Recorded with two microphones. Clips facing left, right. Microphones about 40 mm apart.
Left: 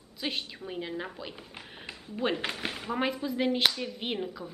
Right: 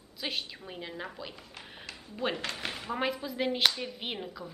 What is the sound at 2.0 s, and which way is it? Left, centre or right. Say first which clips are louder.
A woman's voice: left 3 dB; centre.